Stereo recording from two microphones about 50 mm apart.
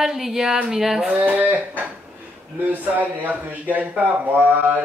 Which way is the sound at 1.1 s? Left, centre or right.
Right.